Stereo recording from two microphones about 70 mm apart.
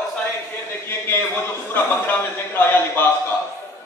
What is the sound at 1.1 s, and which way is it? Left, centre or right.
A man's voice, left.